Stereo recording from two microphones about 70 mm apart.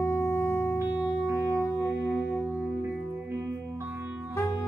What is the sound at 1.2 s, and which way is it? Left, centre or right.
Music, right.